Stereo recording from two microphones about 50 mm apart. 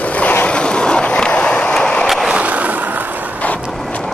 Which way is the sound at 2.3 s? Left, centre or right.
Right.